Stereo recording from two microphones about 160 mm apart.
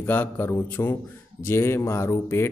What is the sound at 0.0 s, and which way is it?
A man's voice, 10° left (ahead or behind).